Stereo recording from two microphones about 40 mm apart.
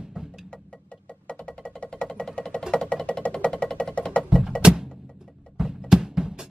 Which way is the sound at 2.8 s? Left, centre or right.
Centre.